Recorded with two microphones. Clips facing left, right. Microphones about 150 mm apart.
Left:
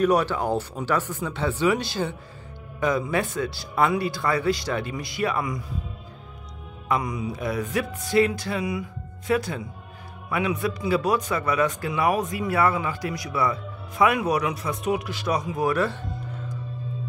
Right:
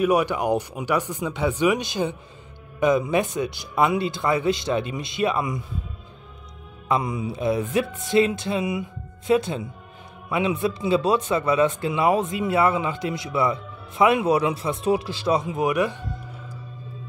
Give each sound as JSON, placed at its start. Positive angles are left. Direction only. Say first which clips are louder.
{"t": 0.0, "sound": "speech", "louder": "right 1 dB", "side_deg": -10}
{"t": 6.9, "sound": "speech", "louder": "right 2 dB", "side_deg": -25}